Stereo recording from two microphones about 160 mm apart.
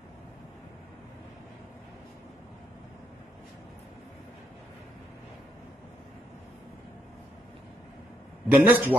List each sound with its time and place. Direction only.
8.5 s a man's voice: 10° right (ahead or behind)